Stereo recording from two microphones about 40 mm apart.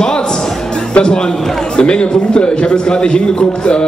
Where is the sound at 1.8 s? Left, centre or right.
Left.